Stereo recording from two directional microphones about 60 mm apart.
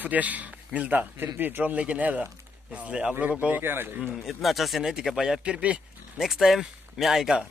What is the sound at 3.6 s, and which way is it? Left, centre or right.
Speech, right.